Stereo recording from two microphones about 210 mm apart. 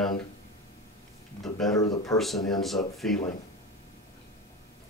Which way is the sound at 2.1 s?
Centre (ahead or behind).